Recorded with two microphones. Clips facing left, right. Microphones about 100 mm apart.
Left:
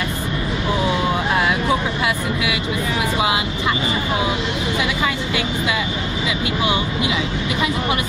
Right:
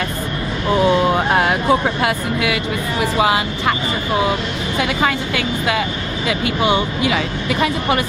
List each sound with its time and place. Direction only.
1.1 s speech: 40° right (ahead or behind)
4.7 s speech: 50° right (ahead or behind)